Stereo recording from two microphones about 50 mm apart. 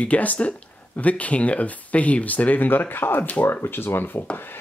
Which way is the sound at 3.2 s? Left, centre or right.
Left.